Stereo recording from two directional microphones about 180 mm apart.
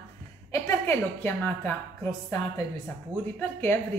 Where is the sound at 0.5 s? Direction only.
15° left (ahead or behind).